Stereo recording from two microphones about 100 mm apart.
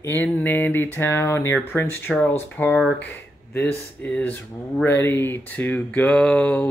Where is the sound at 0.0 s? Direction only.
20° left (ahead or behind).